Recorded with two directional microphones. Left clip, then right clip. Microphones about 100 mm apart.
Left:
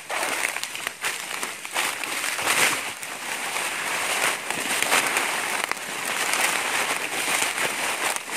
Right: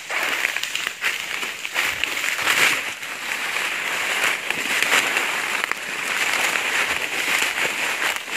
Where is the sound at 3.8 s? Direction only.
10° left (ahead or behind).